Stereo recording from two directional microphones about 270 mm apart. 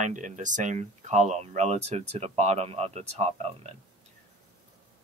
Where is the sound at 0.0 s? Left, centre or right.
Right.